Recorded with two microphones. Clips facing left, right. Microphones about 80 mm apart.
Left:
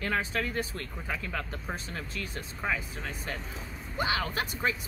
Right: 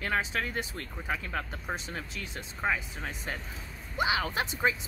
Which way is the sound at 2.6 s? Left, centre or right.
Centre.